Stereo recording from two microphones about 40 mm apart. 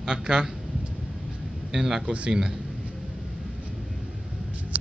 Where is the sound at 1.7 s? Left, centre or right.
Centre.